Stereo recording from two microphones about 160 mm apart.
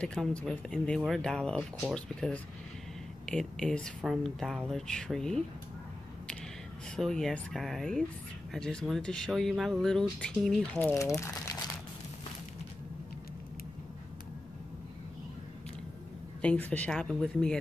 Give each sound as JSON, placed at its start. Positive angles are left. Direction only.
{"t": 0.0, "sound": "speech", "side_deg": 5}
{"t": 7.0, "sound": "speech", "side_deg": 0}
{"t": 11.0, "sound": "speech", "side_deg": 20}
{"t": 16.3, "sound": "speech", "side_deg": 10}